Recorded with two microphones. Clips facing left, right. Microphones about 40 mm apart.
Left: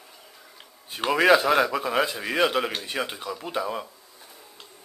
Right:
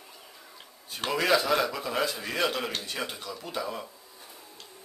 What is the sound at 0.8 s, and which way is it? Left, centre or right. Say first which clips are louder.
A man's voice: left 7 dB; left.